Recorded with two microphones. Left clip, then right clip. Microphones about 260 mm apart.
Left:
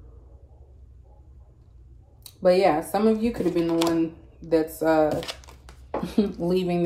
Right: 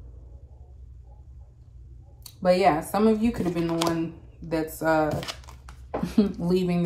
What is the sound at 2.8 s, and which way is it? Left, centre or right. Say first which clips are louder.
Speech: even; centre.